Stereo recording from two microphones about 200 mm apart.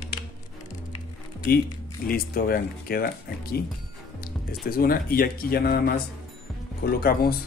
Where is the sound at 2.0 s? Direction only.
45° left (ahead or behind).